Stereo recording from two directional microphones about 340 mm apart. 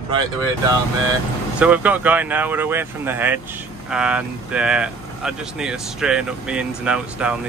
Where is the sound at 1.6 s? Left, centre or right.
Centre.